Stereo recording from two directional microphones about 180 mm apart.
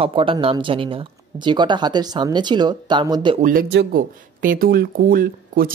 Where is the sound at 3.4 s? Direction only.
55° right (ahead or behind).